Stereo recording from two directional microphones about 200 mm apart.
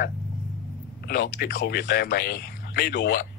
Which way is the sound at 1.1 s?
55° left (ahead or behind).